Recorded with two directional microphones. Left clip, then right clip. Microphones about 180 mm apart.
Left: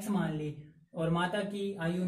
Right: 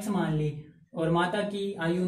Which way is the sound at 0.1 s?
15° left (ahead or behind).